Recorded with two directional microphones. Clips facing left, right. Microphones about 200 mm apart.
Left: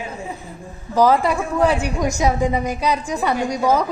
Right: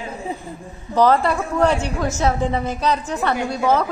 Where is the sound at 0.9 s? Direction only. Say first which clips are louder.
Even; 10° left (ahead or behind).